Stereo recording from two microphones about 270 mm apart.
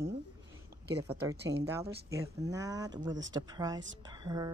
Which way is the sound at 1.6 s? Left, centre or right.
Centre.